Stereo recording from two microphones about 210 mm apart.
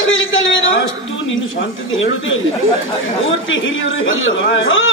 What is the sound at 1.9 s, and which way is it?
Speech, 65° left (ahead or behind).